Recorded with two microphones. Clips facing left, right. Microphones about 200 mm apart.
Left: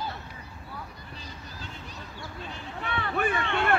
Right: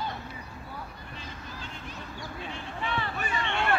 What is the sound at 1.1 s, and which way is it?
Vehicle, 40° left (ahead or behind).